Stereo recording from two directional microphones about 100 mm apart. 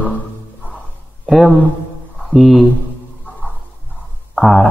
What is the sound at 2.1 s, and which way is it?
Mantra, centre (ahead or behind).